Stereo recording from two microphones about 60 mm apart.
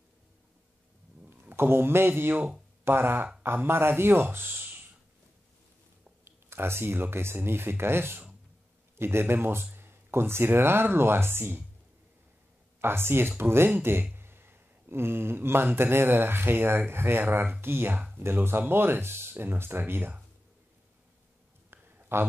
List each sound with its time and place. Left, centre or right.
1.3 s speech: right
2.3 s speech: right
2.8 s speech: right
6.2 s speech: right
12.8 s speech: right
21.6 s a sound: right